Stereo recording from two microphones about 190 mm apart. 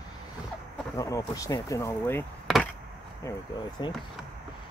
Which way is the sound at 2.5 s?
Centre (ahead or behind).